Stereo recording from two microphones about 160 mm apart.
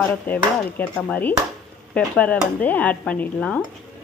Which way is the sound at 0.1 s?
10° left (ahead or behind).